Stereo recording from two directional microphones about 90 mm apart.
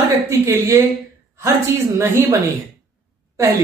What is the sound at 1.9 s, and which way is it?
Speech, 30° right (ahead or behind).